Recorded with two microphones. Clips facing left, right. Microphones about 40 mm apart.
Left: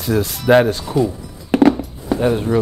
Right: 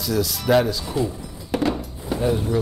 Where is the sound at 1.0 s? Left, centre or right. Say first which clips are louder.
Left 6 dB; left.